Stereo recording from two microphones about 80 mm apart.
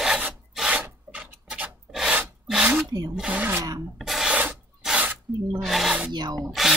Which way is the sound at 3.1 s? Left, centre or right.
Centre.